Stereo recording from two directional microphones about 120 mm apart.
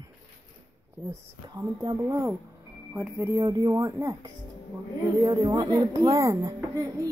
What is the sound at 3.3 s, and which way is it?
Speech, 35° right (ahead or behind).